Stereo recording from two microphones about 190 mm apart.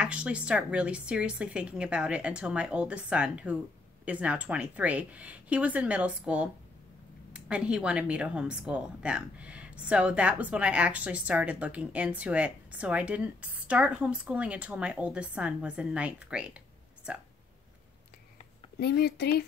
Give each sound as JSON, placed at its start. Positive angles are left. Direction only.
{"t": 0.0, "sound": "a woman's voice", "side_deg": -5}
{"t": 18.8, "sound": "a woman's voice", "side_deg": 55}